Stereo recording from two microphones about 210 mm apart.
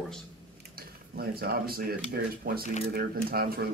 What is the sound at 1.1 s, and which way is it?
Speech, 45° right (ahead or behind).